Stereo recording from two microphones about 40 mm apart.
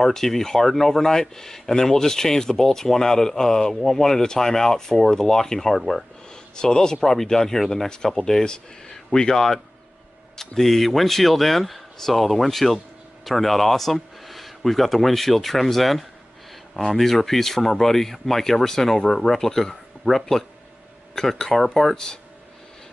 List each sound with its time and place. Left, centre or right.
0.0 s speech: centre
6.5 s speech: left
7.0 s speech: centre
21.9 s speech: centre